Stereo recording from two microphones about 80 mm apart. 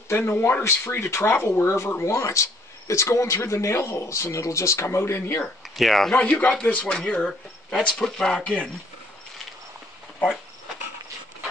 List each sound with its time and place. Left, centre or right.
0.1 s speech: left
5.6 s speech: centre
6.1 s speech: centre